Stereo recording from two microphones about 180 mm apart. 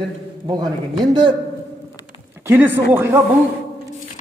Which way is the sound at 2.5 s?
10° right (ahead or behind).